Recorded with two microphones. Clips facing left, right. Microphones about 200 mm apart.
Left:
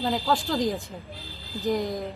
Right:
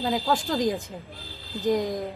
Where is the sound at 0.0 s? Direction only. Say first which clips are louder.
Even; centre (ahead or behind).